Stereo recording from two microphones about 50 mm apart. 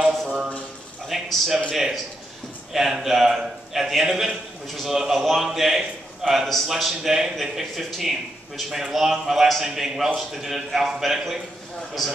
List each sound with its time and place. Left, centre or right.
0.3 s speech: right
1.0 s a man's voice: centre